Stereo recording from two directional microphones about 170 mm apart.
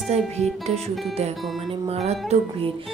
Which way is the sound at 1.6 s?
35° right (ahead or behind).